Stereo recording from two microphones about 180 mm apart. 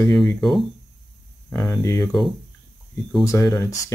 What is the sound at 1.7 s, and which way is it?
Speech, 15° left (ahead or behind).